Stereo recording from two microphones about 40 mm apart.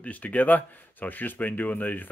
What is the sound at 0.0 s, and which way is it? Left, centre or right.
Speech, left.